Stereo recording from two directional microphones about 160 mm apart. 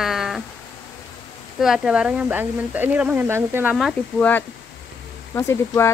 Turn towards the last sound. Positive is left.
turn(degrees=15)  # may be behind; listen again after turning